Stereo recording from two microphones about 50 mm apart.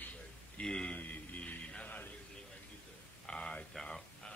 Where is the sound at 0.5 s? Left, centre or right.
Centre.